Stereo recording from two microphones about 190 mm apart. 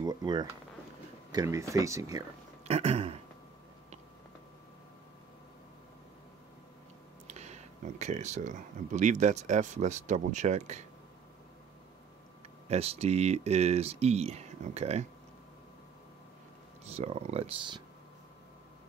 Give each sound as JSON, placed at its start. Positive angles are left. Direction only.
{"t": 0.0, "sound": "a sound", "side_deg": -20}
{"t": 1.3, "sound": "speech", "side_deg": -15}
{"t": 2.6, "sound": "speech", "side_deg": -35}
{"t": 7.2, "sound": "speech", "side_deg": -35}
{"t": 12.6, "sound": "speech", "side_deg": -35}
{"t": 16.8, "sound": "speech", "side_deg": -35}